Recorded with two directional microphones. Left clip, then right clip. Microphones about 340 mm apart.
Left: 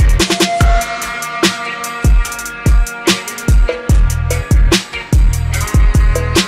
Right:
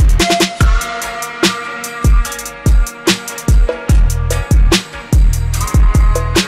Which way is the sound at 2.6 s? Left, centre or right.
Centre.